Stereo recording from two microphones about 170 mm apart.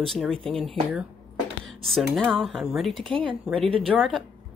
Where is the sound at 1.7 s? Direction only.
Centre (ahead or behind).